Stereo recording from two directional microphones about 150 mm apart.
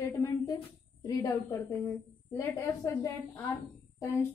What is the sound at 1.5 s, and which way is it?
A woman's voice, 20° left (ahead or behind).